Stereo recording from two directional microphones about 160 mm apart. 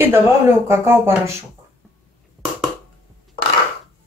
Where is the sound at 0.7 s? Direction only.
15° right (ahead or behind).